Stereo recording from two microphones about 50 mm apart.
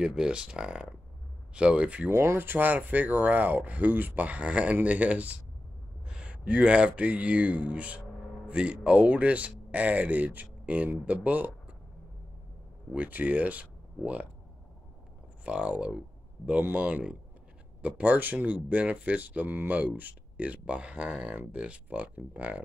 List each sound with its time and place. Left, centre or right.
0.0 s speech: centre
2.0 s speech: right
6.0 s a sound: centre
6.6 s speech: right
12.9 s speech: right
15.4 s speech: right